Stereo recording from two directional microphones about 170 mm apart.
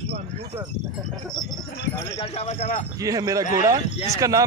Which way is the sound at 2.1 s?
35° left (ahead or behind).